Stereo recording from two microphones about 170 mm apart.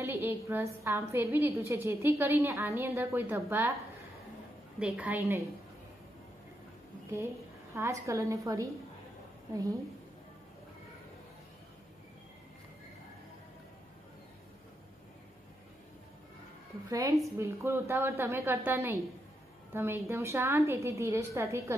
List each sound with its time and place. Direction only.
0.0 s a woman's voice: 15° right (ahead or behind)
4.7 s a woman's voice: 5° right (ahead or behind)
7.7 s a woman's voice: 15° right (ahead or behind)
16.9 s a woman's voice: 20° right (ahead or behind)